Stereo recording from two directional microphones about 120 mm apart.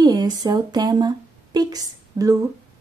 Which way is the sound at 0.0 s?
35° right (ahead or behind).